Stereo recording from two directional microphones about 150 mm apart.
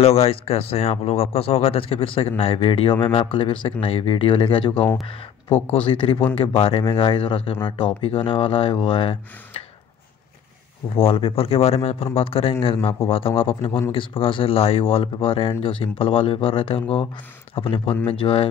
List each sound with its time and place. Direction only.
0.0 s speech: 40° left (ahead or behind)
11.0 s speech: 40° left (ahead or behind)
13.7 s a man's voice: 15° left (ahead or behind)
13.9 s speech: 35° left (ahead or behind)